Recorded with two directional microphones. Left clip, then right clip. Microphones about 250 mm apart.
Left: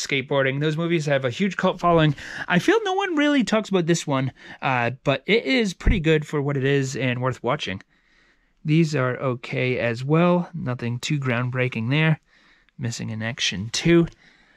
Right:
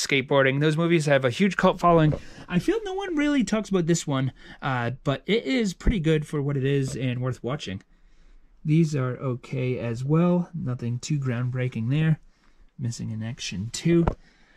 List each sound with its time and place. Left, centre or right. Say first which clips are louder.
0.0 s speech: right 1 dB; centre
2.2 s speech: left 7 dB; centre
3.2 s speech: left 1 dB; left
8.8 s speech: left 6 dB; centre